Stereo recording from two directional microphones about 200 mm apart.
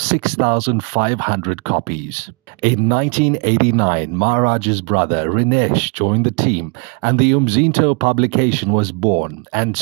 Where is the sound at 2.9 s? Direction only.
40° right (ahead or behind).